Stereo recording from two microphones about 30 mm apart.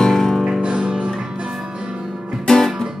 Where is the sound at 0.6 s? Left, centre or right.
Right.